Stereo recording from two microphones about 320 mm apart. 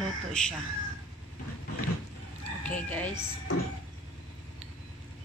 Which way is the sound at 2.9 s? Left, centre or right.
Centre.